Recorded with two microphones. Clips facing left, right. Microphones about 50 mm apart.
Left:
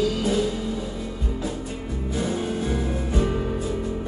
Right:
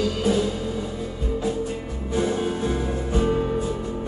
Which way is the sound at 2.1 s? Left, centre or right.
Right.